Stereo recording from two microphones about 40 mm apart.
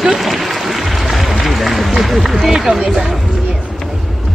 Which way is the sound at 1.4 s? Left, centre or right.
Centre.